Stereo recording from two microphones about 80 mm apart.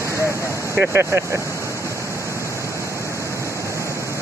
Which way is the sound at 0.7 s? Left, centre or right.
Right.